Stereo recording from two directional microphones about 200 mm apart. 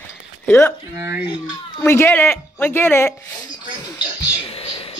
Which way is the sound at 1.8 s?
10° left (ahead or behind).